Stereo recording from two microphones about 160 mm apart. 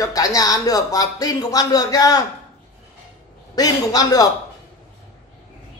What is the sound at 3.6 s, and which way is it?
Speech, 25° left (ahead or behind).